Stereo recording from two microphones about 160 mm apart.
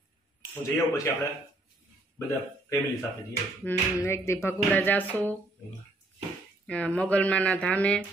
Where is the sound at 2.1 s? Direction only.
20° left (ahead or behind).